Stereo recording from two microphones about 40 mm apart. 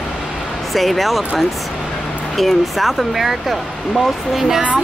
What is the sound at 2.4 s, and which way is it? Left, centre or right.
Speech, centre.